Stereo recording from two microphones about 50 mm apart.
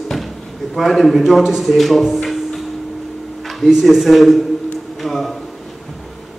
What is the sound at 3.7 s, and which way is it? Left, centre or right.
A man's voice, centre.